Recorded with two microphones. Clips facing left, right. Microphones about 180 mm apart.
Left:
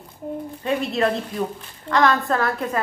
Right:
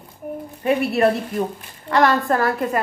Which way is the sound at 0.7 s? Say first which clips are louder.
Right 4 dB; 65° right (ahead or behind).